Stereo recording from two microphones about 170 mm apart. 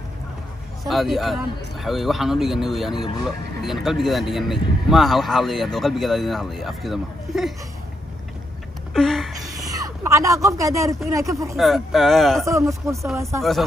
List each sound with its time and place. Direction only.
0.8 s speech: centre (ahead or behind)
8.9 s a sound: centre (ahead or behind)
9.8 s speech: 20° right (ahead or behind)
11.5 s speech: centre (ahead or behind)
12.4 s speech: 20° right (ahead or behind)
13.4 s speech: centre (ahead or behind)